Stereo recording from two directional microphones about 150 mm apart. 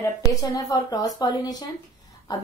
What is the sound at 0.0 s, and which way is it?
Speech, 25° left (ahead or behind).